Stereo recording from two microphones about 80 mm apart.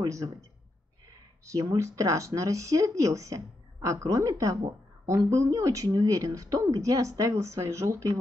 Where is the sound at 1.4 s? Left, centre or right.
Right.